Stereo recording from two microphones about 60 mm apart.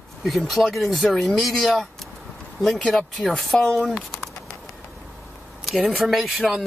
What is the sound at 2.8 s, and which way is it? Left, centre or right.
Speech, centre.